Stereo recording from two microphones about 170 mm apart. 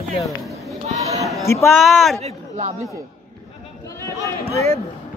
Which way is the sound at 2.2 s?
45° right (ahead or behind).